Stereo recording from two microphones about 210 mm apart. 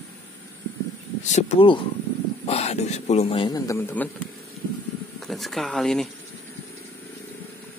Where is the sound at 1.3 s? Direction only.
25° left (ahead or behind); by 4.1 s 10° left (ahead or behind).